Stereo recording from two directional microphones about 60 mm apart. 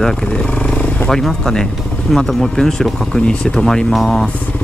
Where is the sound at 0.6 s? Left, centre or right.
Left.